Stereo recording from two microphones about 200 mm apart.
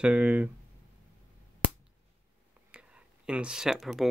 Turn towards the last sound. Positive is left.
turn(degrees=0)  # may be behind; listen again after turning